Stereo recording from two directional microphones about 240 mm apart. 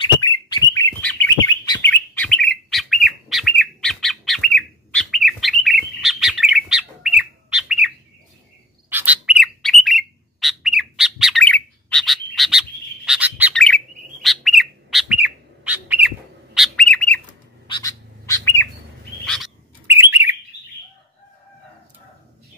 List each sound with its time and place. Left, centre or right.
0.0 s bird: centre
8.9 s bird: centre
19.2 s bird: centre
19.9 s bird: centre